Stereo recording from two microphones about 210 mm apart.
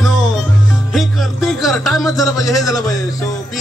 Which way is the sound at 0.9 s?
Centre (ahead or behind).